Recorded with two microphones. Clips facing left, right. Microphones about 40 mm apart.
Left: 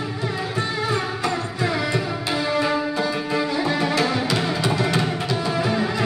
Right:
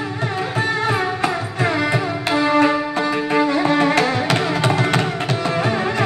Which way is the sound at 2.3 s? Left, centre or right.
Right.